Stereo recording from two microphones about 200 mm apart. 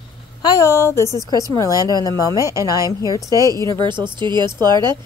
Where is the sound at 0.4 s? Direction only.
15° left (ahead or behind).